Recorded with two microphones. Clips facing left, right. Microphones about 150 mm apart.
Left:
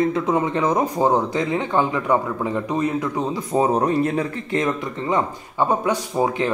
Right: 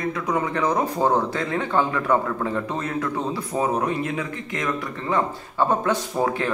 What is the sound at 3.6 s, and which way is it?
Speech, 35° left (ahead or behind).